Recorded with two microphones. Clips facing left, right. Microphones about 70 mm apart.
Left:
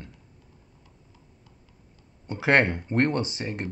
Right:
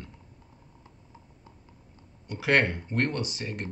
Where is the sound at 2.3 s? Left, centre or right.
Left.